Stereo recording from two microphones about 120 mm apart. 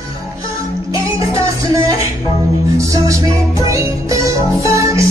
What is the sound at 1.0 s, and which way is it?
Music, 25° right (ahead or behind).